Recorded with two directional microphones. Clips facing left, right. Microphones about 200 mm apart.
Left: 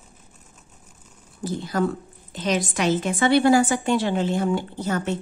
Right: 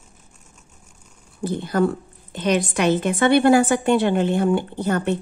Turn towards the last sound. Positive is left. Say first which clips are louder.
# right 4 dB
turn(degrees=-60)  # may be behind; listen again after turning